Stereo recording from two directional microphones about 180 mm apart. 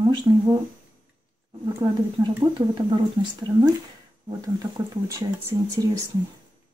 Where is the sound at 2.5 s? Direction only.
25° right (ahead or behind).